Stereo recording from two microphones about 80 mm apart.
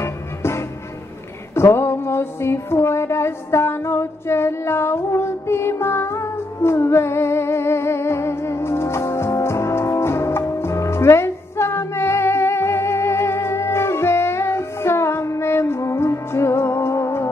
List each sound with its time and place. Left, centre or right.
0.0 s music: left